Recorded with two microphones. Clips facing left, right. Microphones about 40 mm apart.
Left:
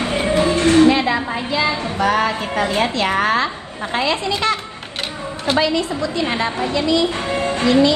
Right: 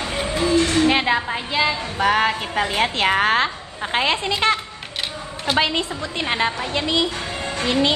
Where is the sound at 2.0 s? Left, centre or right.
Right.